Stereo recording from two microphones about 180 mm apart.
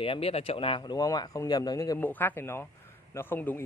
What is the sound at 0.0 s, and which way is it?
Speech, 30° left (ahead or behind).